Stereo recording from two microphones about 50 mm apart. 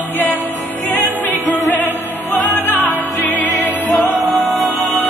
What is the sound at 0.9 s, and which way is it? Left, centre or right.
Music, left.